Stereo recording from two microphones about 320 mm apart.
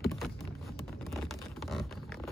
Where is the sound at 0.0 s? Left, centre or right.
Centre.